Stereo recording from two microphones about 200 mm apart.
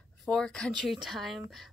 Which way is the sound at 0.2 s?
5° left (ahead or behind).